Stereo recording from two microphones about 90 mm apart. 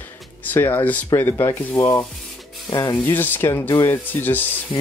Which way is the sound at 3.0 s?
20° left (ahead or behind).